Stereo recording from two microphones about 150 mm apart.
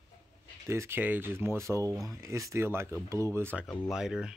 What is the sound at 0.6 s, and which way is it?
Speech, 15° right (ahead or behind).